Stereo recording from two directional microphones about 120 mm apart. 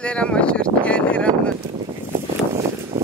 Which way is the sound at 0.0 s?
10° left (ahead or behind).